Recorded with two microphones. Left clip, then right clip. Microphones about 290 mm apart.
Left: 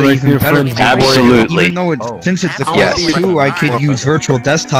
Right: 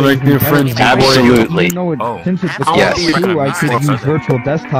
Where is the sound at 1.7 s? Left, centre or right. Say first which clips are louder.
Left 1 dB; left.